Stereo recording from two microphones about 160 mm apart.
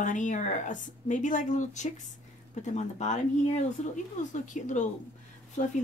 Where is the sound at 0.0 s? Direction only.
50° left (ahead or behind).